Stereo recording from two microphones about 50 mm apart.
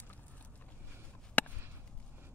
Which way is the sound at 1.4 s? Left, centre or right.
Left.